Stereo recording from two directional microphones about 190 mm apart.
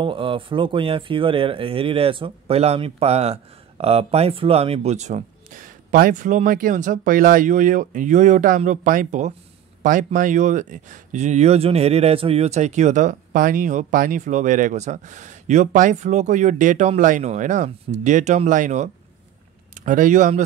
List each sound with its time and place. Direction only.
0.0 s speech: 30° right (ahead or behind)